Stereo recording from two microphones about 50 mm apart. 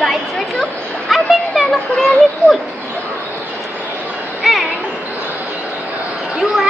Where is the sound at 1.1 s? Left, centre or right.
Centre.